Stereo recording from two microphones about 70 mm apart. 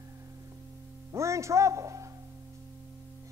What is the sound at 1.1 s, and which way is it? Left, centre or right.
Speech, right.